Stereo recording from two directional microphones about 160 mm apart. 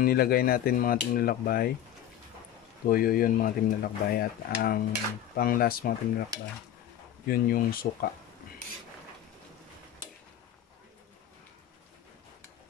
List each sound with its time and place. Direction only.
0.0 s speech: 70° left (ahead or behind)
2.9 s speech: 65° left (ahead or behind)
7.2 s speech: 65° left (ahead or behind)